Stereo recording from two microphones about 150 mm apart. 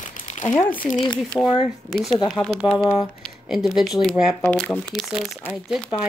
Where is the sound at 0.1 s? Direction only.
55° left (ahead or behind).